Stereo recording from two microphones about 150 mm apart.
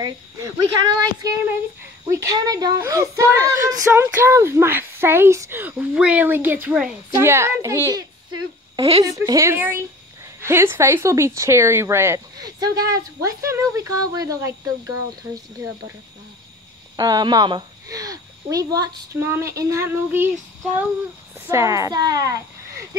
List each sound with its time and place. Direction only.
0.0 s speech: 25° right (ahead or behind)
8.7 s a woman's voice: 40° right (ahead or behind)
9.0 s speech: 25° right (ahead or behind)
16.9 s speech: 25° right (ahead or behind)
21.5 s speech: 20° right (ahead or behind)